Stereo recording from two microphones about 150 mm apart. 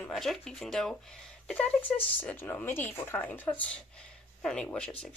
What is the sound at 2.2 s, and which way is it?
Speech, 10° left (ahead or behind).